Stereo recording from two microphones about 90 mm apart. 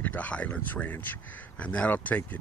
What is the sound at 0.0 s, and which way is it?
Speech, 15° left (ahead or behind).